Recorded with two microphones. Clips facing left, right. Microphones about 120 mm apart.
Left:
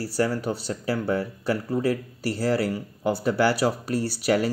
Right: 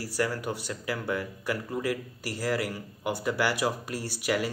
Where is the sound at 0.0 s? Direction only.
30° left (ahead or behind).